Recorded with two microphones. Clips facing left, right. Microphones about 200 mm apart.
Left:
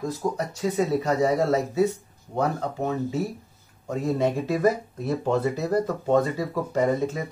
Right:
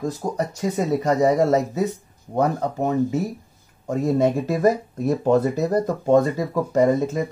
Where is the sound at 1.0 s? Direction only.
45° right (ahead or behind).